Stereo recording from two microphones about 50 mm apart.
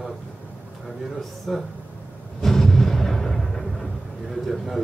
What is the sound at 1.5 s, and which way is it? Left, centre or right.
Speech, centre.